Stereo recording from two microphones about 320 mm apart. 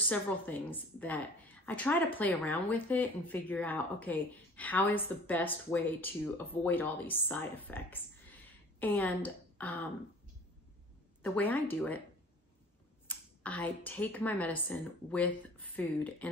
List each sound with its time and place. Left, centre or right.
0.1 s speech: centre
11.2 s speech: centre
13.0 s speech: centre